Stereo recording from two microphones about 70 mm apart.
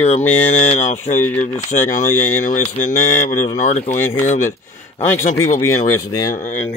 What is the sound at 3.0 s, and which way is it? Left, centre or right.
Speech, left.